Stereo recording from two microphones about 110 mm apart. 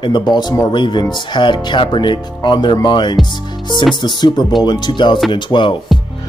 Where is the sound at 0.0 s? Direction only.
45° left (ahead or behind).